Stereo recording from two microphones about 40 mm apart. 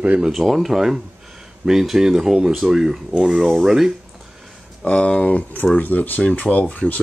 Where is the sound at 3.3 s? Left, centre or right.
Centre.